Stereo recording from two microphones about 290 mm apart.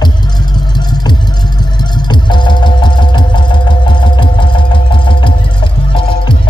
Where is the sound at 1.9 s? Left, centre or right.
Centre.